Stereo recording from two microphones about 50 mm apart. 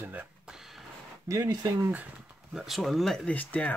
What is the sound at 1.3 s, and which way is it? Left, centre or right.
Speech, right.